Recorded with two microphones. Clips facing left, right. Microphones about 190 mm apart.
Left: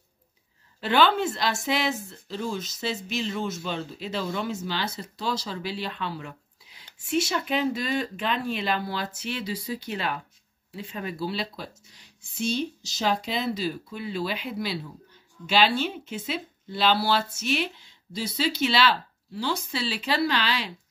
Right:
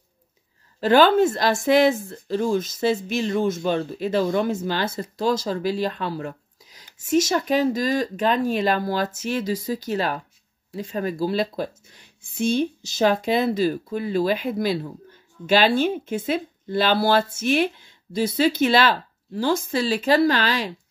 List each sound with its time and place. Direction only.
0.7 s speech: 40° right (ahead or behind)